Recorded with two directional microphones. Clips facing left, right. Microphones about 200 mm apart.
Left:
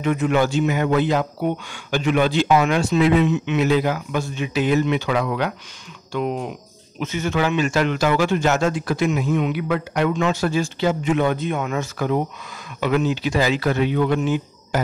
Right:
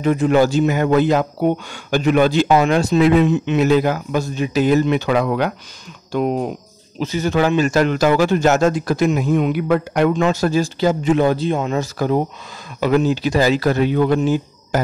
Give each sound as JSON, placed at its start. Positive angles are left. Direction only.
{"t": 0.0, "sound": "a man's voice", "side_deg": -35}